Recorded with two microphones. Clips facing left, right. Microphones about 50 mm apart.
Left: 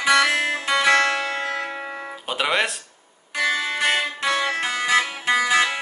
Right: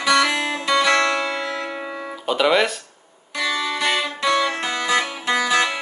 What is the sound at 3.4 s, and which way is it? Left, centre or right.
Music, left.